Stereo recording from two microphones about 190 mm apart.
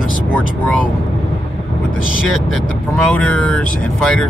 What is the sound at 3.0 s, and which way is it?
Speech, 5° left (ahead or behind).